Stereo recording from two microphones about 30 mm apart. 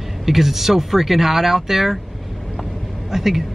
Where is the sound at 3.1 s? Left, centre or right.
Centre.